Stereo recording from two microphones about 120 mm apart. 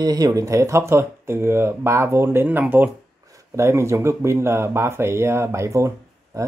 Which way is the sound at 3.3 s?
25° right (ahead or behind).